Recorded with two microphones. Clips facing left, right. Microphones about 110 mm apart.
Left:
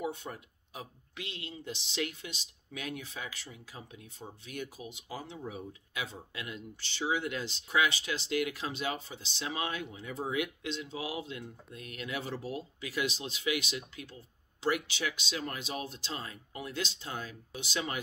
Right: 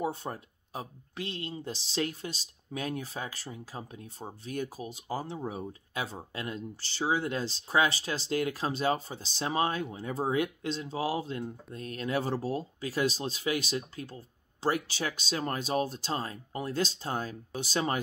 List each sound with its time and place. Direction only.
0.0 s speech: 35° right (ahead or behind)